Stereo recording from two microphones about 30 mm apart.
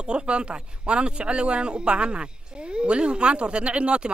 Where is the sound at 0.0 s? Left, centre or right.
Right.